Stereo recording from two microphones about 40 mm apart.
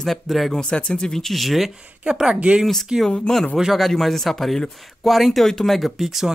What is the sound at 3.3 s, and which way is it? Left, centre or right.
Speech, left.